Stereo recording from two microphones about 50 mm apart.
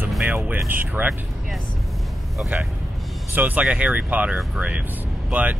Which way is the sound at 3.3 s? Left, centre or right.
Right.